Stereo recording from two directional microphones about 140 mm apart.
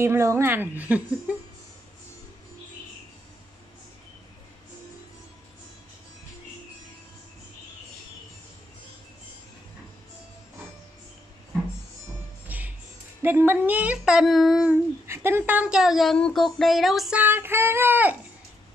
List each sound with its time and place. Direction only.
0.0 s speech: 20° right (ahead or behind)
12.4 s music: 10° right (ahead or behind)
13.2 s speech: 15° right (ahead or behind)
15.0 s speech: 15° right (ahead or behind); by 17.2 s centre (ahead or behind)
17.2 s speech: 15° right (ahead or behind)